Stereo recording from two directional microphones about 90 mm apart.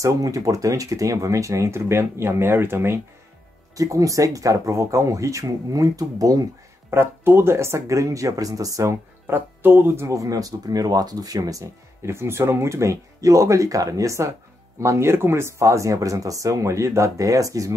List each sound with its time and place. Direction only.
0.0 s speech: 40° right (ahead or behind)
3.7 s speech: 40° right (ahead or behind)
6.9 s speech: 25° right (ahead or behind)
9.3 s speech: 20° right (ahead or behind); by 17.7 s 40° right (ahead or behind)